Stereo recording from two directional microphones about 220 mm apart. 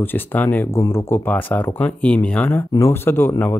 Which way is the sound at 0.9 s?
10° left (ahead or behind).